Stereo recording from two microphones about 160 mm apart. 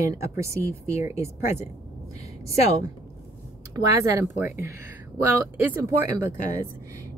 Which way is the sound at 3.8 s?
20° right (ahead or behind).